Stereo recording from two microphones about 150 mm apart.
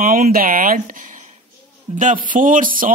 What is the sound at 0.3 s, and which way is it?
Speech, 70° right (ahead or behind).